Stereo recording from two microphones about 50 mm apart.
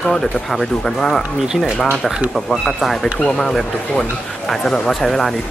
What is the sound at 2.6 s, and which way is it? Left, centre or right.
Speech, centre.